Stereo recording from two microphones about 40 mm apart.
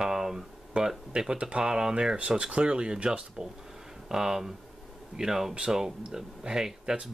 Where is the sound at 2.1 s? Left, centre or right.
Right.